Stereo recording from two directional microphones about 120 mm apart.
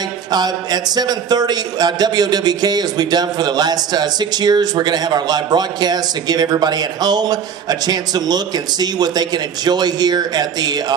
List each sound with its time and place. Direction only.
0.3 s speech: 35° right (ahead or behind)